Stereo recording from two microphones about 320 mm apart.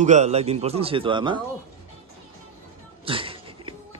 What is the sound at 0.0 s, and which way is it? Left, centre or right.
A man's voice, right.